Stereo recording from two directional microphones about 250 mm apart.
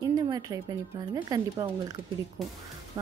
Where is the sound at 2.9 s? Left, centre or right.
Centre.